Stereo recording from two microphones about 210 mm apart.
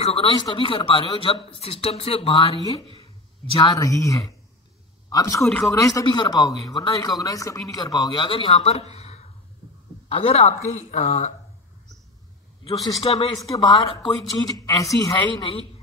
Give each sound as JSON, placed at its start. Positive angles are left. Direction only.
{"t": 0.0, "sound": "speech", "side_deg": 30}
{"t": 3.5, "sound": "a woman's voice", "side_deg": 20}
{"t": 12.6, "sound": "a woman's voice", "side_deg": 25}